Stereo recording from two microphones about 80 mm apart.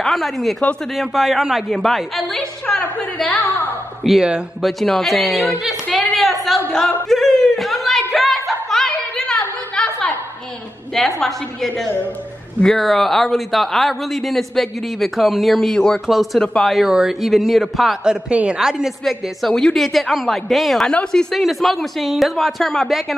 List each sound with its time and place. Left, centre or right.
0.0 s a man's voice: centre
3.3 s a woman's voice: left
4.0 s a man's voice: centre
5.9 s a sound: centre
11.0 s a man's voice: centre
18.3 s a man's voice: centre